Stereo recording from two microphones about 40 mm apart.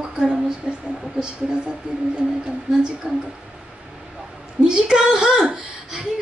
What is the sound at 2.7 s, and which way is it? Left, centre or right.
Speech, centre.